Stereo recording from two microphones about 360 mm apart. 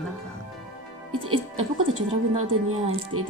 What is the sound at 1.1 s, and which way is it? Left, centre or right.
Speech, centre.